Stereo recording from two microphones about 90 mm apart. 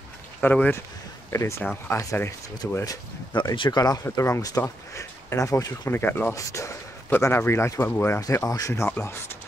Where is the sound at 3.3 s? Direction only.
65° left (ahead or behind).